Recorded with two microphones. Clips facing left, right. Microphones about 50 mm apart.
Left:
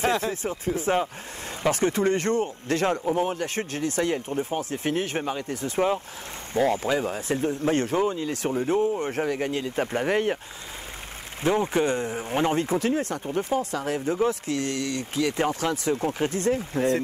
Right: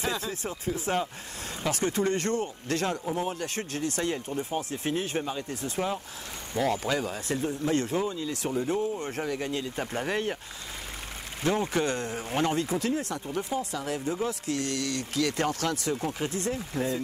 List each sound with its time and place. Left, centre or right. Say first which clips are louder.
0.0 s speech: left 7 dB; left
0.7 s speech: left 6 dB; left
4.6 s speech: left 1 dB; left
6.6 s speech: left 4 dB; left
11.4 s speech: left 4 dB; left
16.1 s speech: left 6 dB; left